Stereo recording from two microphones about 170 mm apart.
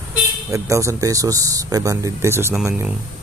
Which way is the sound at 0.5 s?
20° right (ahead or behind).